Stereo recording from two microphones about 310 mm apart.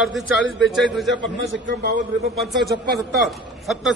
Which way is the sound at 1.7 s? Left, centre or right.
Right.